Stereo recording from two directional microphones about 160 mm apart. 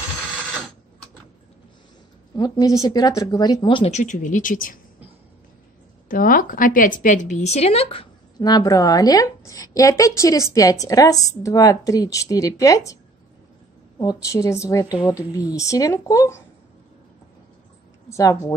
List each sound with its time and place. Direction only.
2.3 s speech: 25° left (ahead or behind); by 4.7 s 55° left (ahead or behind)
6.0 s a woman's voice: 60° left (ahead or behind); by 12.9 s 20° left (ahead or behind)
13.9 s speech: 20° left (ahead or behind)
18.1 s speech: 20° left (ahead or behind)